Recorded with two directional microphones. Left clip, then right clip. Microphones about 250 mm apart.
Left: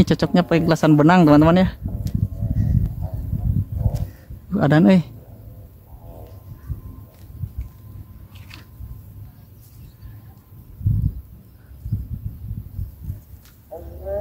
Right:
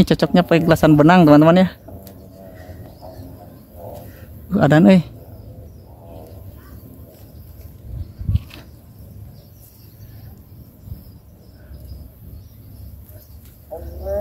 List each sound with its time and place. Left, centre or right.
0.0 s speech: centre
4.5 s speech: centre